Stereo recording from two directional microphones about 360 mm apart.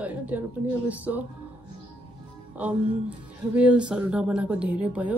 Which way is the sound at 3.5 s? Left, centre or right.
Centre.